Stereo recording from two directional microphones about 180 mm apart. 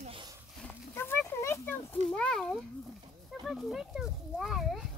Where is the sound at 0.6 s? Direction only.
10° left (ahead or behind).